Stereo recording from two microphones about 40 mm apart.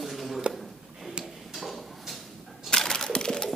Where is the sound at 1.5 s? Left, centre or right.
Centre.